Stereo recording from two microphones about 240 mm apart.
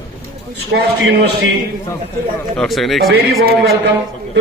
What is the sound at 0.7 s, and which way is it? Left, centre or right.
Speech, right.